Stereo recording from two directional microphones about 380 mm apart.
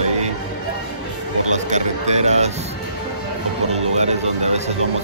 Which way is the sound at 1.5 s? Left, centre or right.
Centre.